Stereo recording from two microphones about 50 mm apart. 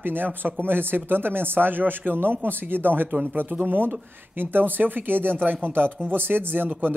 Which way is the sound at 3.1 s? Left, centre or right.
Right.